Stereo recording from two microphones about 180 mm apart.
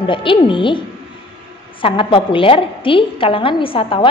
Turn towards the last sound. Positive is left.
turn(degrees=30)  # may be behind; listen again after turning